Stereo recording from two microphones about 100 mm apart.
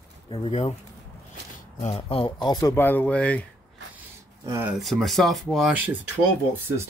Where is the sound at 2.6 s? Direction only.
25° left (ahead or behind).